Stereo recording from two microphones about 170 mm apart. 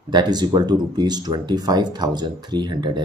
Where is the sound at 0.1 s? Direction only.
25° right (ahead or behind).